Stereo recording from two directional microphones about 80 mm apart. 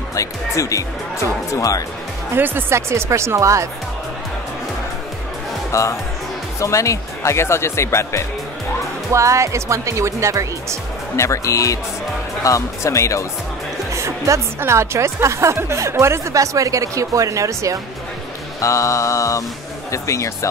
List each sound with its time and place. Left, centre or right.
0.1 s speech: left
2.3 s a woman's voice: right
5.7 s speech: left
9.1 s a woman's voice: right
11.1 s speech: left
13.9 s music: right
14.6 s a woman's voice: right
18.6 s speech: left